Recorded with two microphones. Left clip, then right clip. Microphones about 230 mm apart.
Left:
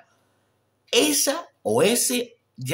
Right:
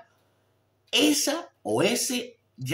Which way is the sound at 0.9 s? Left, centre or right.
Left.